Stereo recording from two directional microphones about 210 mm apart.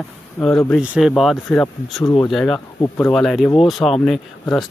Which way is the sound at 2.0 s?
20° left (ahead or behind).